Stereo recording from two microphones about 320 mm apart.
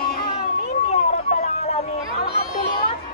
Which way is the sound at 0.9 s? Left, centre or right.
Centre.